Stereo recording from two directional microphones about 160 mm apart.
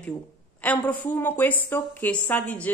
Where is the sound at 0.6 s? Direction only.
10° left (ahead or behind).